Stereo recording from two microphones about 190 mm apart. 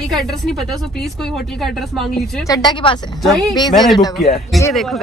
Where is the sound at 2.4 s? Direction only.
20° left (ahead or behind).